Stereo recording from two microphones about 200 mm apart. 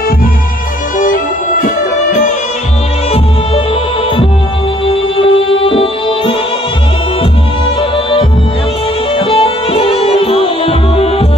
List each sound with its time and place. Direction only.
0.9 s music: 40° left (ahead or behind)
4.8 s music: 25° left (ahead or behind)
9.1 s music: 25° left (ahead or behind)